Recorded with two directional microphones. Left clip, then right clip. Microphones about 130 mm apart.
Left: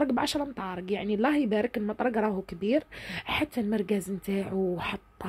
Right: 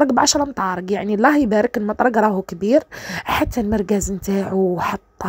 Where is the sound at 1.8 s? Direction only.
30° right (ahead or behind).